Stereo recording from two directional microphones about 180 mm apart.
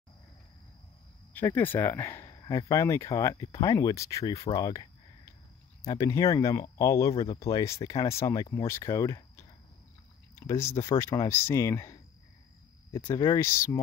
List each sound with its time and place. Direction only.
1.3 s speech: 10° left (ahead or behind)
4.6 s a sound: 20° left (ahead or behind)
5.9 s speech: 20° left (ahead or behind)
10.3 s speech: 15° left (ahead or behind)